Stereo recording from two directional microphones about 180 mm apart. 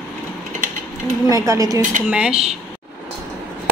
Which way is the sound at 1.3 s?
20° right (ahead or behind).